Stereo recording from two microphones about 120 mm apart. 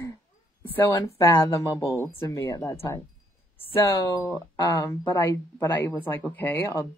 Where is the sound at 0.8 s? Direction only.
30° left (ahead or behind).